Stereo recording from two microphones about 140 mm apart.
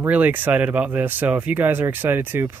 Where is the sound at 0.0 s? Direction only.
10° right (ahead or behind).